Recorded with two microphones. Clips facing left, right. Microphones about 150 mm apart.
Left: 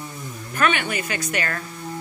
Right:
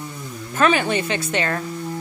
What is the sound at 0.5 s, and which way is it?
Speech, 30° right (ahead or behind).